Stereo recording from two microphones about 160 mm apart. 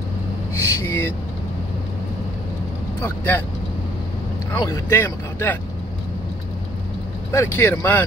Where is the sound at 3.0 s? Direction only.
15° left (ahead or behind).